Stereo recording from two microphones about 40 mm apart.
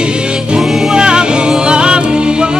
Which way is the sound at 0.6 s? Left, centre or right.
Centre.